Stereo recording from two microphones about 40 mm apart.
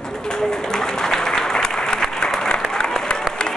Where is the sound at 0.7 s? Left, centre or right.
Centre.